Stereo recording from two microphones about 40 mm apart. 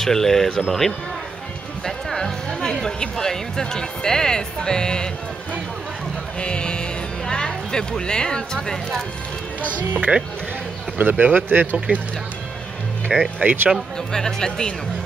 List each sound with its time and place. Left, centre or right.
0.0 s speech: centre
6.4 s speech: left
9.8 s speech: right
13.4 s speech: right
13.9 s speech: centre